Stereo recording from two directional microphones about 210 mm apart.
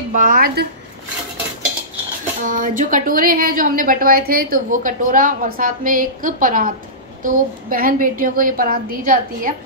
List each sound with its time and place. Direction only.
0.1 s a woman's voice: 40° right (ahead or behind)
2.4 s a woman's voice: 40° right (ahead or behind)